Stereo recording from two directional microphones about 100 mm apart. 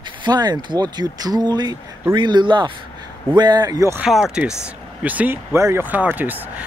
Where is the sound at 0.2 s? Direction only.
45° right (ahead or behind).